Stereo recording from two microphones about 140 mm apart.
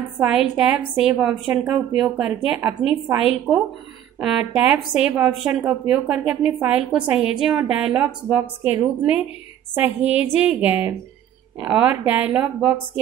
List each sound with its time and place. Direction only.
0.2 s a woman's voice: 5° right (ahead or behind)
4.2 s a woman's voice: 5° right (ahead or behind)